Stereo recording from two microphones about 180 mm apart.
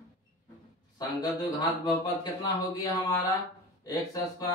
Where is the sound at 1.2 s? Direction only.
20° left (ahead or behind).